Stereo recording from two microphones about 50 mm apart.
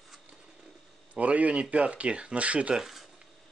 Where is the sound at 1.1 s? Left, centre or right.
Right.